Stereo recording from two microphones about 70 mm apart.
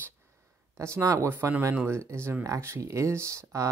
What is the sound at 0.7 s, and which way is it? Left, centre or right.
Speech, right.